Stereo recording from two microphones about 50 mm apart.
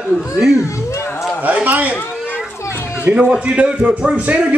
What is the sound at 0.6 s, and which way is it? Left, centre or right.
Speech, left.